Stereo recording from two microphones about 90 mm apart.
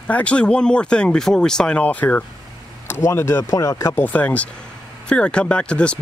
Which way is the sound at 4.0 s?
15° left (ahead or behind).